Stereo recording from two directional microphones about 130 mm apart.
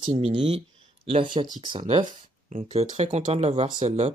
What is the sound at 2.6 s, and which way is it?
Speech, 50° right (ahead or behind).